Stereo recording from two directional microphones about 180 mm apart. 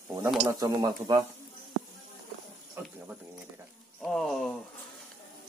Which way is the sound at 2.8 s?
10° right (ahead or behind).